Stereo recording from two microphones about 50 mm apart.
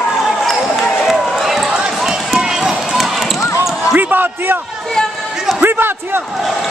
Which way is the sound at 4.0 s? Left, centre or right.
Right.